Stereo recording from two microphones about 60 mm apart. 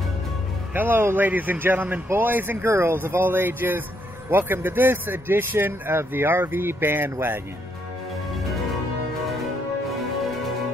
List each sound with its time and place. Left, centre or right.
0.7 s speech: right
9.2 s music: centre